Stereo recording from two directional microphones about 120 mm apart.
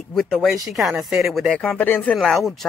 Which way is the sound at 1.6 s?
15° left (ahead or behind).